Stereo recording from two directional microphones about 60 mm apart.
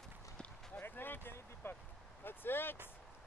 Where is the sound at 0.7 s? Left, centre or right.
Left.